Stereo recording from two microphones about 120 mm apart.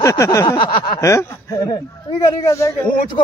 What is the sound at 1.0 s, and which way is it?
A man's voice, 25° left (ahead or behind).